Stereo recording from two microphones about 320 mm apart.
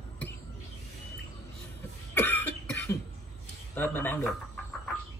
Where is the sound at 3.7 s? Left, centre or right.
Centre.